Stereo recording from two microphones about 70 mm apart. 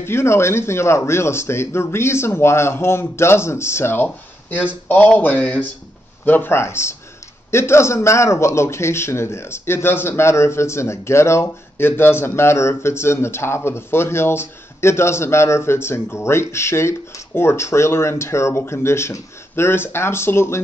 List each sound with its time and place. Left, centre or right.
0.0 s a man's voice: left
6.6 s a man's voice: left